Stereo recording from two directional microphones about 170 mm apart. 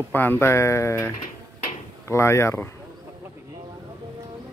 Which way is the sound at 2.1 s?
15° left (ahead or behind).